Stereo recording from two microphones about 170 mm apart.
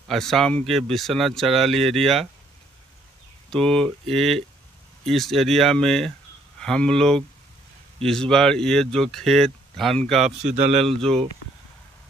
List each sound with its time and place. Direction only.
0.1 s speech: centre (ahead or behind)
3.4 s speech: 5° left (ahead or behind)
10.4 s speech: 40° right (ahead or behind)
11.1 s speech: 5° left (ahead or behind)